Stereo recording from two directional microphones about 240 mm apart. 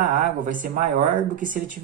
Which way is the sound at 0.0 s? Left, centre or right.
Right.